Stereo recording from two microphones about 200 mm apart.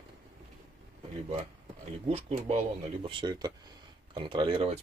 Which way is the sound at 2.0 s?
30° right (ahead or behind).